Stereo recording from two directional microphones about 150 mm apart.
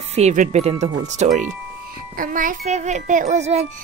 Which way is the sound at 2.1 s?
65° right (ahead or behind).